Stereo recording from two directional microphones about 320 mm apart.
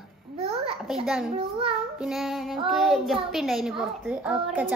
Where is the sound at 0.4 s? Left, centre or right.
Centre.